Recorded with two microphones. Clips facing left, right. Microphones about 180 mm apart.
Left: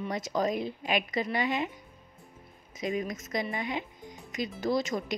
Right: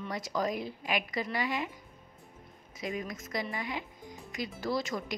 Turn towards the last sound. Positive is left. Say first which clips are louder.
# left 4 dB
turn(degrees=20)  # may be behind; listen again after turning